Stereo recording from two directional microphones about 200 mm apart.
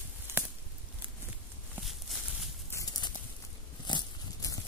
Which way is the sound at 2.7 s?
20° left (ahead or behind).